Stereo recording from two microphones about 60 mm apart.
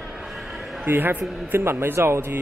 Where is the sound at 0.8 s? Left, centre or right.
Right.